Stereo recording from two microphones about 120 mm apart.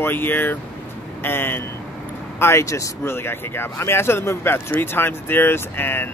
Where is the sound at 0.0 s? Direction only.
15° left (ahead or behind).